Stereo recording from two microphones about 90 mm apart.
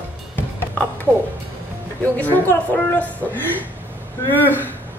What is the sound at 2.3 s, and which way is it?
Speech, 20° left (ahead or behind).